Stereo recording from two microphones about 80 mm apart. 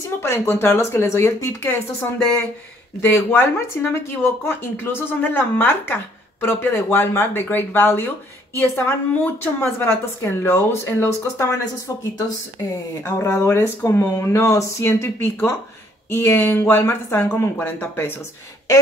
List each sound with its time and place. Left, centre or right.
0.0 s speech: left
13.0 s speech: left